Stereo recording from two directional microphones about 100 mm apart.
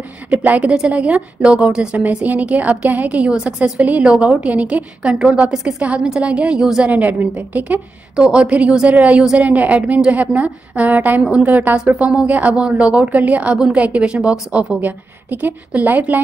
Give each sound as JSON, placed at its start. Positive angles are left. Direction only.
{"t": 0.3, "sound": "a woman's voice", "side_deg": -15}